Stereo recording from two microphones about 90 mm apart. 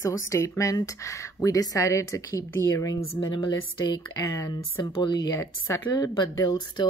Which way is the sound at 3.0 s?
60° left (ahead or behind).